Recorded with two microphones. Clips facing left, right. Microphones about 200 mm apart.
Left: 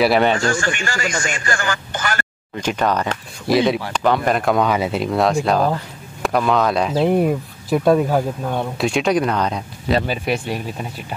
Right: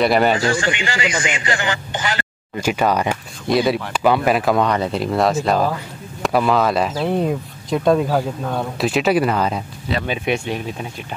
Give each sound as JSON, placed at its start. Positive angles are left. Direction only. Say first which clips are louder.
{"t": 0.0, "sound": "speech", "louder": "even", "side_deg": 0}
{"t": 0.5, "sound": "speech", "louder": "right 1 dB", "side_deg": -20}
{"t": 3.4, "sound": "speech", "louder": "left 1 dB", "side_deg": 0}
{"t": 6.9, "sound": "speech", "louder": "left 3 dB", "side_deg": 15}